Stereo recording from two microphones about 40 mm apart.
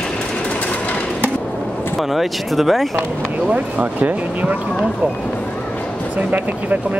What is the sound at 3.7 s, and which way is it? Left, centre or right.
Speech, right.